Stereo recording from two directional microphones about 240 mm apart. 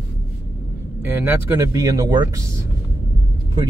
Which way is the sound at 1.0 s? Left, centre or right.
Centre.